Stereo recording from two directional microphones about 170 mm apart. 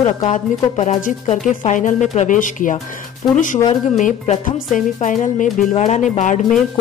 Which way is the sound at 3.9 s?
45° left (ahead or behind).